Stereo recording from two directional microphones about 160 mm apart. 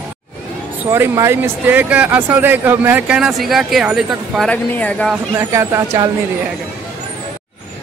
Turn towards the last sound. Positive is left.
turn(degrees=-20)  # may be behind; listen again after turning